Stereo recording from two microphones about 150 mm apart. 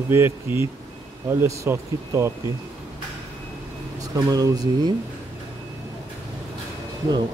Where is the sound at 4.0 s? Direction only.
25° right (ahead or behind).